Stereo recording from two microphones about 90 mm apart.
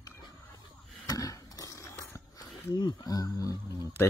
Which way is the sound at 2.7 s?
50° left (ahead or behind).